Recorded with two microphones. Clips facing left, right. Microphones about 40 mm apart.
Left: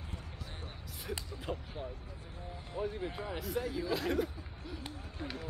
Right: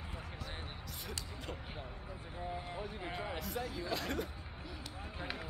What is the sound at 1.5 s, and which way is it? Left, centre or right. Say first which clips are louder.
Speech: left 9 dB; centre.